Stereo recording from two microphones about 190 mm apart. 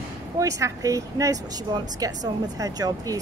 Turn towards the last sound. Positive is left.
turn(degrees=-20)  # may be behind; listen again after turning